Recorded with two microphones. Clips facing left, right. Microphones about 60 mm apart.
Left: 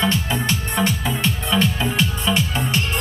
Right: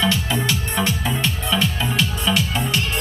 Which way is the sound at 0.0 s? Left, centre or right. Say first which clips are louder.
Even; left.